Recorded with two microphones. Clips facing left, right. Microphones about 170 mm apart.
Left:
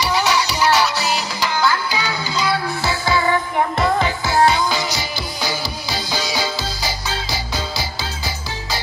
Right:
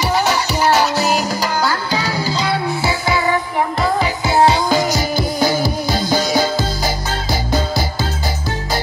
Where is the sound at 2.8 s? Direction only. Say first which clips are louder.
Left 1 dB; 15° right (ahead or behind).